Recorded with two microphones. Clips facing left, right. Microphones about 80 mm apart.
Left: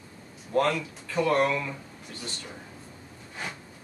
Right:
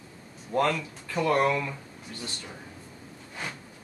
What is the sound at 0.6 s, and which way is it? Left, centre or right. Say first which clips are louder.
Speech: left 1 dB; centre.